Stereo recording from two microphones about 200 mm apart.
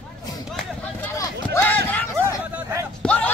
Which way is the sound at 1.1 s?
15° left (ahead or behind).